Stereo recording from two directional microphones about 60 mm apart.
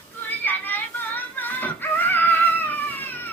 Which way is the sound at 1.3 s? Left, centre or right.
Left.